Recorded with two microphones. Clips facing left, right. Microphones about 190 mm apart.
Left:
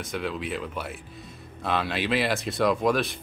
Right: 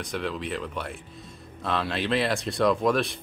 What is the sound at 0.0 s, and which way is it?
Speech, centre (ahead or behind).